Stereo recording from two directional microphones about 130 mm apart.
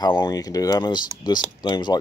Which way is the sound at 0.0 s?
30° left (ahead or behind).